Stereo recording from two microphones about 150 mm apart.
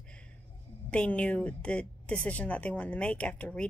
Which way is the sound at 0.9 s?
10° left (ahead or behind).